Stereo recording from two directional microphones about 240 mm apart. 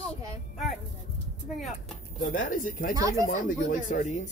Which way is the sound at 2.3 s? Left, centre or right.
Left.